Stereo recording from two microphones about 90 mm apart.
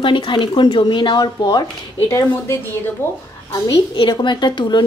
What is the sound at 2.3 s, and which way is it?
Speech, 25° left (ahead or behind).